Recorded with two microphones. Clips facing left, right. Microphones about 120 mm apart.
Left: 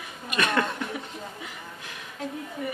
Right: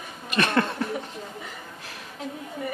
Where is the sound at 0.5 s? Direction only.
35° right (ahead or behind).